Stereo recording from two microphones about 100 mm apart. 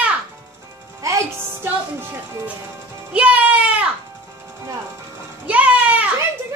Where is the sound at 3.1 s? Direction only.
15° right (ahead or behind).